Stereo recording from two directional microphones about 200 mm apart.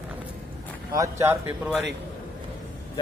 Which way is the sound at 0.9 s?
15° right (ahead or behind).